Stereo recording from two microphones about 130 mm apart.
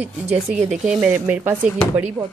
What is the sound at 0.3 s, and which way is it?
Speech, 65° right (ahead or behind).